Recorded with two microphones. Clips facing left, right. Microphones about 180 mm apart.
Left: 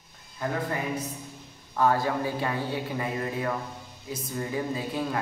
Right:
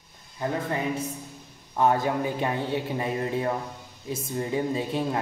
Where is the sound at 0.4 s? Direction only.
25° right (ahead or behind).